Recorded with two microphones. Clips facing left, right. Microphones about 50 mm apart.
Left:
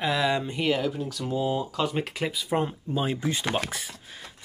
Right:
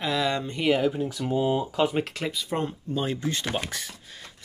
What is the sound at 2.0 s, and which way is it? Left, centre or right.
Speech, centre.